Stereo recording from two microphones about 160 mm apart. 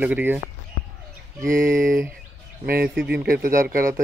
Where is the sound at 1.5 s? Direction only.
60° right (ahead or behind).